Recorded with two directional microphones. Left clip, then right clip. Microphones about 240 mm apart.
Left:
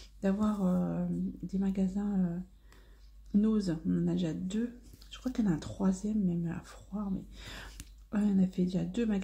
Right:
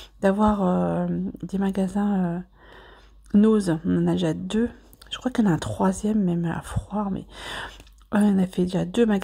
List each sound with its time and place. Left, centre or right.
0.0 s speech: right